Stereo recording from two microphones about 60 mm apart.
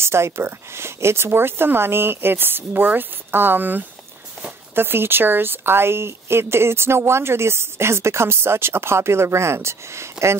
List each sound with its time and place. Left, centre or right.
0.0 s a woman's voice: right